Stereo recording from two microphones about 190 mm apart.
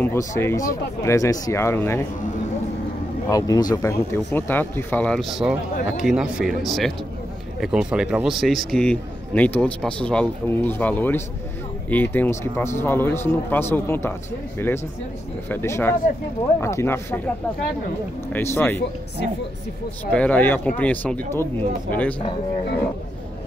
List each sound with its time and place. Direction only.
0.4 s speech: 15° left (ahead or behind)
3.3 s a man's voice: 20° left (ahead or behind)
18.3 s speech: 10° left (ahead or behind)
20.1 s speech: 5° left (ahead or behind)